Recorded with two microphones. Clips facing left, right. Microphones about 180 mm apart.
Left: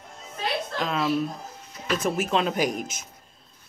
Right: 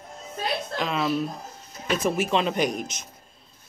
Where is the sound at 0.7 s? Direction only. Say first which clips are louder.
Even; centre (ahead or behind).